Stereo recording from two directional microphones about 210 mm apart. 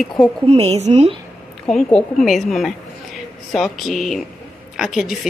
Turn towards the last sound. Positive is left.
turn(degrees=0)  # may be behind; listen again after turning